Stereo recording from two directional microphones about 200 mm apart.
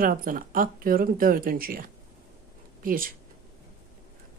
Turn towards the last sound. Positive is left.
turn(degrees=-45)  # may be behind; listen again after turning